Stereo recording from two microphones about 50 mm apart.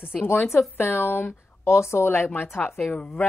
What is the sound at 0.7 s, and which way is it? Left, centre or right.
Speech, left.